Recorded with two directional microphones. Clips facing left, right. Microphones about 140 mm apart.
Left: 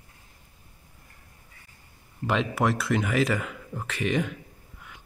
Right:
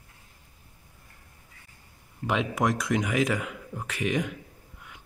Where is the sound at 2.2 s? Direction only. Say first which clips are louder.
Left 1 dB; 10° right (ahead or behind).